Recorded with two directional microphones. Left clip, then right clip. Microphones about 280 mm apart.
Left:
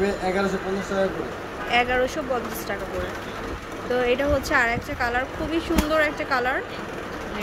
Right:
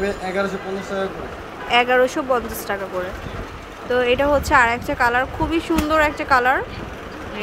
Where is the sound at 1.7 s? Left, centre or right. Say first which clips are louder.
Right 6 dB; centre.